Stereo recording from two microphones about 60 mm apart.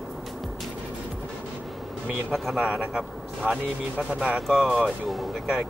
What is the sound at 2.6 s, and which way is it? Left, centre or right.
Speech, centre.